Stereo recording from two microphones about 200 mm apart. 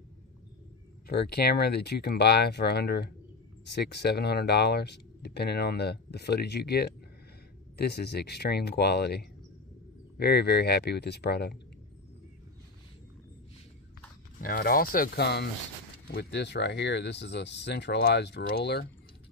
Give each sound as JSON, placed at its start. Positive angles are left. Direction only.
{"t": 1.0, "sound": "speech", "side_deg": 50}
{"t": 14.4, "sound": "speech", "side_deg": 50}